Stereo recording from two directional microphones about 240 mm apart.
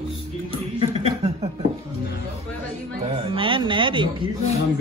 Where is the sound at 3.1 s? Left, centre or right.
Right.